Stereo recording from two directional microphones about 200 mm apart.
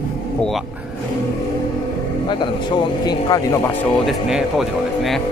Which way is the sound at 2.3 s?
20° left (ahead or behind).